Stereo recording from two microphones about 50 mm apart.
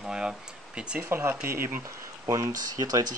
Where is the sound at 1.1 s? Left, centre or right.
Right.